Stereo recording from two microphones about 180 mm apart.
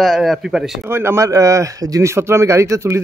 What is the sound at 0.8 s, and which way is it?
A man's voice, 15° right (ahead or behind).